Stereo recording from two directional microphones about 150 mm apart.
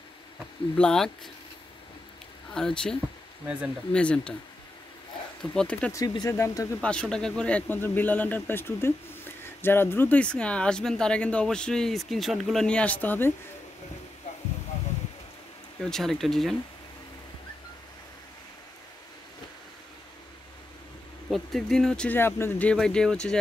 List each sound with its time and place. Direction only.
0.7 s speech: 5° left (ahead or behind)
2.5 s speech: 5° left (ahead or behind)
5.4 s speech: 5° left (ahead or behind)
5.9 s speech: 25° left (ahead or behind)
6.8 s speech: 5° left (ahead or behind)
15.8 s speech: centre (ahead or behind)
21.3 s speech: centre (ahead or behind)